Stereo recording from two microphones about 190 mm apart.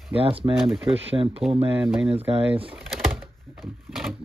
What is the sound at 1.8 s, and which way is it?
Speech, 5° right (ahead or behind).